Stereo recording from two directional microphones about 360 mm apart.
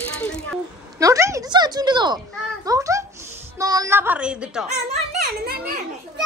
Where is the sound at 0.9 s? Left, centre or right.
Centre.